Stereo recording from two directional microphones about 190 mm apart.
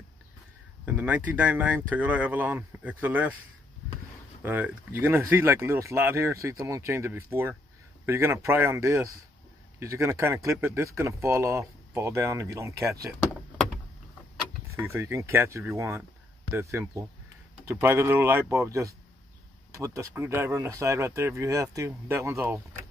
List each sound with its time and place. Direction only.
0.8 s speech: 10° right (ahead or behind)
4.4 s speech: 10° right (ahead or behind)
14.8 s speech: 15° right (ahead or behind)